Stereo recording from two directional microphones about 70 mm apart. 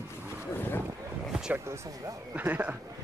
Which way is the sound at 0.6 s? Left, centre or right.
Left.